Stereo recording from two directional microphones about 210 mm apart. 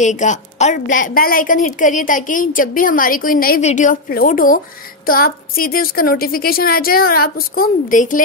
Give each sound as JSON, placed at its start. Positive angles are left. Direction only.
{"t": 0.0, "sound": "a woman's voice", "side_deg": 35}